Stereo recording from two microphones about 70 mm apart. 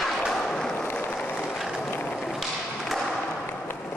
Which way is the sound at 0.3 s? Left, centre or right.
Centre.